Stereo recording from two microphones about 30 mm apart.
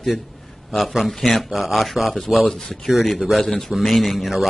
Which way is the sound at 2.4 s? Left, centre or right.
Centre.